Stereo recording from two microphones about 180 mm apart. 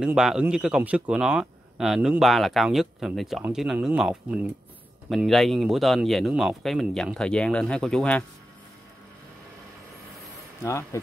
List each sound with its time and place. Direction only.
0.0 s speech: 5° right (ahead or behind)
10.6 s speech: 15° left (ahead or behind)